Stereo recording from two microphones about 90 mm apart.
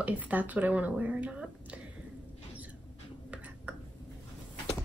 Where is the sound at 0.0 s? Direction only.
15° right (ahead or behind).